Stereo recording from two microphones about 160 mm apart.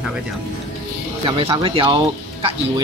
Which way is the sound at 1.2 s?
35° right (ahead or behind).